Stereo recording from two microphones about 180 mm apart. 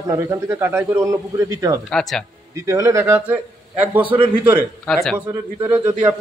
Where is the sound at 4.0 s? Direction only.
30° right (ahead or behind).